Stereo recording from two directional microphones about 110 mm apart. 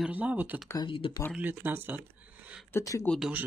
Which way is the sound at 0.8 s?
50° left (ahead or behind).